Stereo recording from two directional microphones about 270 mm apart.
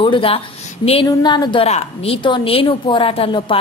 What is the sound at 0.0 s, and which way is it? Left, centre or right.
A woman's voice, centre.